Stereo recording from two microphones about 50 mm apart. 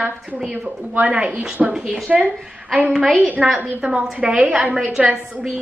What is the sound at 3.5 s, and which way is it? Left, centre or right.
A woman's voice, right.